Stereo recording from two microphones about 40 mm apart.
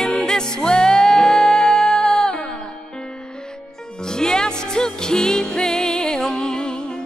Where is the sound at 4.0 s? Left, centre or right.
Centre.